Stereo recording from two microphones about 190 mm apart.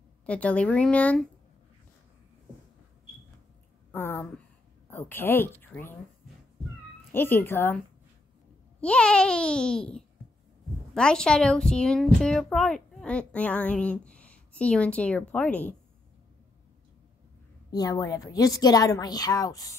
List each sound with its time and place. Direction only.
0.3 s speech: 5° left (ahead or behind)
3.9 s a sound: 10° left (ahead or behind)
4.8 s a woman's voice: 10° left (ahead or behind)
7.1 s speech: 10° left (ahead or behind)
8.8 s a child's voice: 5° left (ahead or behind)
17.6 s a woman's voice: 20° left (ahead or behind)